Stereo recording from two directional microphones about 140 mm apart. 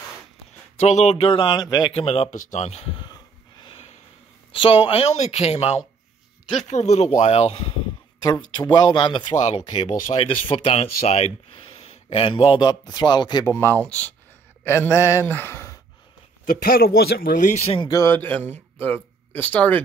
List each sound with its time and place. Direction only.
0.7 s speech: 50° left (ahead or behind); by 2.0 s 30° left (ahead or behind)
2.0 s speech: 45° left (ahead or behind)
4.6 s speech: 40° left (ahead or behind)
8.5 s speech: 30° left (ahead or behind)
12.5 s speech: 30° left (ahead or behind)
13.5 s speech: 15° left (ahead or behind)
16.4 s speech: 90° left
17.6 s speech: 35° left (ahead or behind); by 19.8 s 15° left (ahead or behind)